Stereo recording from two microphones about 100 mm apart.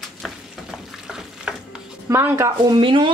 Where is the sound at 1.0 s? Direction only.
5° right (ahead or behind).